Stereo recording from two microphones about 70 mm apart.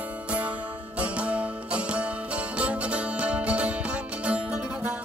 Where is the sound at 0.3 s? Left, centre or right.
Centre.